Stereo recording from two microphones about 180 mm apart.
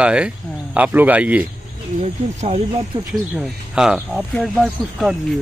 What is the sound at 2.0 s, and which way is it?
Speech, 35° right (ahead or behind).